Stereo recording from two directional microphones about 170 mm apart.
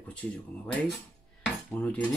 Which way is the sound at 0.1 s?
10° left (ahead or behind).